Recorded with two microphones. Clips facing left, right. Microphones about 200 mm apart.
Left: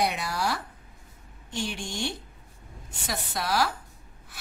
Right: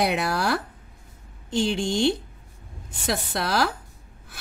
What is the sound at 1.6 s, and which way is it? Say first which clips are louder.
Speech: right 9 dB; 90° right.